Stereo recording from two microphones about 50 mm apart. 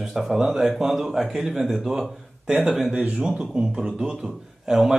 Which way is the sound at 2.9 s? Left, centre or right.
Right.